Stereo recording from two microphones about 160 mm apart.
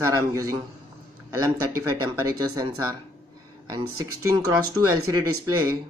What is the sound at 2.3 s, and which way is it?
Speech, 20° right (ahead or behind).